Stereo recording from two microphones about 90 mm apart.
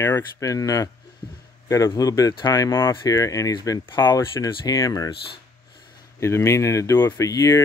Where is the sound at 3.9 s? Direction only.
50° left (ahead or behind).